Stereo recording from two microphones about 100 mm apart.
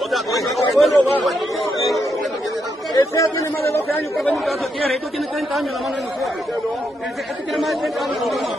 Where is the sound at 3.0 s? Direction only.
30° left (ahead or behind).